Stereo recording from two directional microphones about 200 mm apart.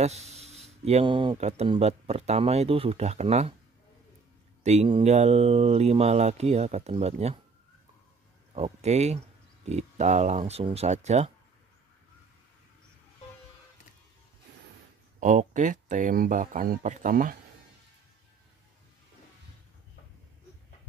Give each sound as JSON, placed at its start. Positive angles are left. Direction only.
{"t": 0.0, "sound": "speech", "side_deg": -35}
{"t": 4.6, "sound": "speech", "side_deg": -30}
{"t": 8.5, "sound": "speech", "side_deg": -30}
{"t": 15.1, "sound": "speech", "side_deg": -40}